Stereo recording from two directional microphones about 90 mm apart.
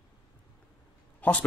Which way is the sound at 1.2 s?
20° left (ahead or behind).